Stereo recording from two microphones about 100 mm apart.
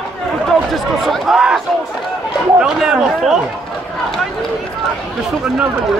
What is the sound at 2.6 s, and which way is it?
Speech, 5° right (ahead or behind).